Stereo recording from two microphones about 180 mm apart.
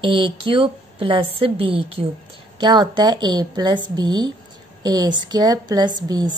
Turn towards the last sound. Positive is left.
turn(degrees=-25)  # may be behind; listen again after turning